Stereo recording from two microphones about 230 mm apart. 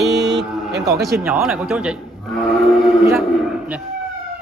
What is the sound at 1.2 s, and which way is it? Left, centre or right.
Speech, centre.